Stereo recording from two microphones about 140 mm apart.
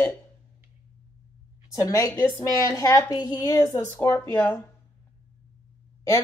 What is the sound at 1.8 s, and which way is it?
Speech, 25° left (ahead or behind).